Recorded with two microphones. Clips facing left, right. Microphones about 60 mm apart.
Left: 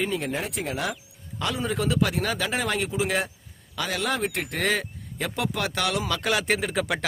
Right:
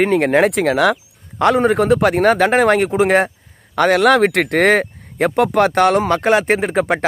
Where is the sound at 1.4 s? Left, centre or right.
Right.